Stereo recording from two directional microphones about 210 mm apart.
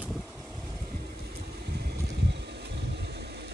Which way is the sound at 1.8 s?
55° right (ahead or behind).